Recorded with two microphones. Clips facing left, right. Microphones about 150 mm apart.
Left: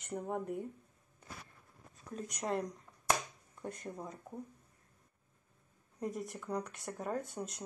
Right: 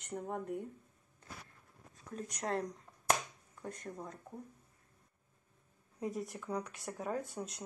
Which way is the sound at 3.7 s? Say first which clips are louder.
Left 1 dB; 5° left (ahead or behind).